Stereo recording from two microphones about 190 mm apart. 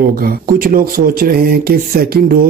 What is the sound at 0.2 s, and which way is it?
Speech, 50° right (ahead or behind).